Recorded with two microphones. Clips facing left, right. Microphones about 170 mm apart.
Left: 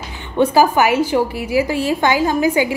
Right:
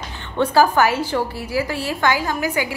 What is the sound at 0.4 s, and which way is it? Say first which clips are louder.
A woman's voice: left 2 dB; 15° left (ahead or behind).